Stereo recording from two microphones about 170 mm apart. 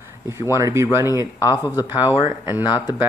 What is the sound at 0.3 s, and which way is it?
Speech, 15° right (ahead or behind).